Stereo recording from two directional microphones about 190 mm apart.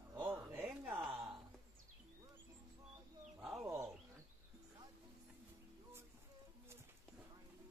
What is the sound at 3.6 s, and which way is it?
Wild animals, 15° right (ahead or behind).